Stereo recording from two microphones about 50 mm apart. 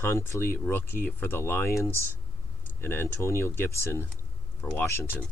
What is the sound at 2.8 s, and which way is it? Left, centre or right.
Speech, left.